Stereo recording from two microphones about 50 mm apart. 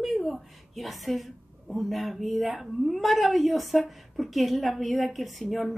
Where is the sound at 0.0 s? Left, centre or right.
Centre.